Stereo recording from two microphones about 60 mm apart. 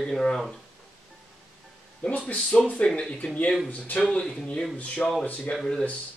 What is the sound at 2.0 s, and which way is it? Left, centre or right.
Speech, centre.